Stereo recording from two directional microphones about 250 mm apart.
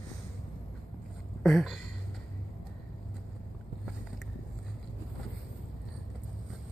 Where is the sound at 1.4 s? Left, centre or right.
Centre.